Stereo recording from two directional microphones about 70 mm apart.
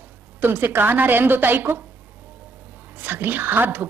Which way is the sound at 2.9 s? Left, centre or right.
Right.